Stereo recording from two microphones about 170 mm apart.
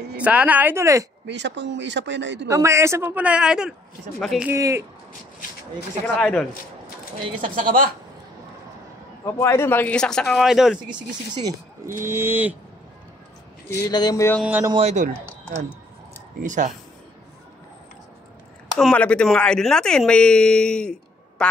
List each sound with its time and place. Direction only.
0.2 s speech: 10° right (ahead or behind)
1.2 s speech: 90° right
2.5 s speech: 15° right (ahead or behind); by 4.5 s centre (ahead or behind)
4.5 s speech: 15° right (ahead or behind)
6.1 s speech: 5° left (ahead or behind)
7.5 s speech: 55° right (ahead or behind)
9.2 s speech: 15° left (ahead or behind); by 10.8 s centre (ahead or behind)
10.9 s speech: 25° right (ahead or behind)
13.8 s a sound: 25° left (ahead or behind)
14.4 s speech: 10° right (ahead or behind)
14.7 s speech: 40° right (ahead or behind)
16.4 s speech: 45° right (ahead or behind)
18.8 s speech: 5° left (ahead or behind)